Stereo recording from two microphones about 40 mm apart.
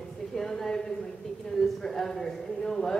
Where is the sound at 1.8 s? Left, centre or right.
Centre.